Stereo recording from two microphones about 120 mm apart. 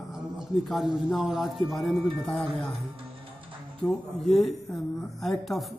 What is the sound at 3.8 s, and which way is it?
Speech, 5° left (ahead or behind).